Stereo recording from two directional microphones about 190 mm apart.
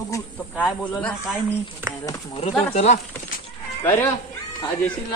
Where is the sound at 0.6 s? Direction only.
5° left (ahead or behind).